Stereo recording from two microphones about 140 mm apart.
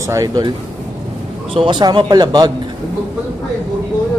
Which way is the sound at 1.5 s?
40° right (ahead or behind).